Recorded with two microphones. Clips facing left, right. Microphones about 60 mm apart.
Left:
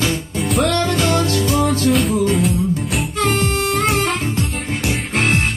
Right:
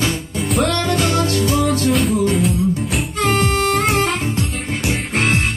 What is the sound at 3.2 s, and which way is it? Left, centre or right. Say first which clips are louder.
Music: right 3 dB; right.